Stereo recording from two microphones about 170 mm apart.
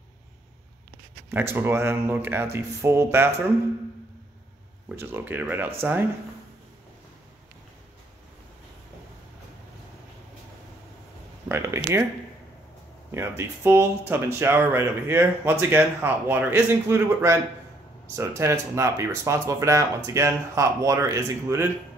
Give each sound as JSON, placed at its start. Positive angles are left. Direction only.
{"t": 1.3, "sound": "speech", "side_deg": -15}
{"t": 4.8, "sound": "speech", "side_deg": -10}
{"t": 11.4, "sound": "speech", "side_deg": -15}
{"t": 13.1, "sound": "speech", "side_deg": -15}